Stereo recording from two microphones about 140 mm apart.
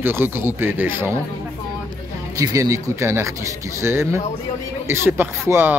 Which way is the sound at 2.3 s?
25° right (ahead or behind).